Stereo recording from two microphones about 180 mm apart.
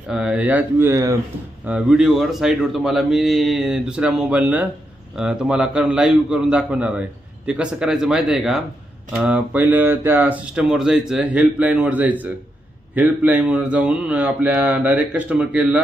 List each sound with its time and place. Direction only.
0.1 s speech: 5° right (ahead or behind)
1.7 s a man's voice: 5° right (ahead or behind)